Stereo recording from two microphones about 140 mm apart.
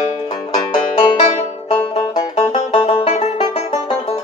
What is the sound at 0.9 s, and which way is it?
Banjo, 40° left (ahead or behind).